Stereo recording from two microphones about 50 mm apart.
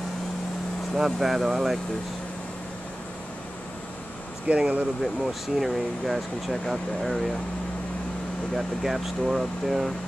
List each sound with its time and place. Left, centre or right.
0.9 s speech: centre
4.5 s speech: right
5.0 s speech: centre
8.5 s speech: centre